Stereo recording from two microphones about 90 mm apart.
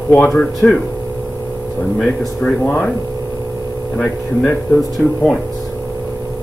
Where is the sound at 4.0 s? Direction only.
15° left (ahead or behind).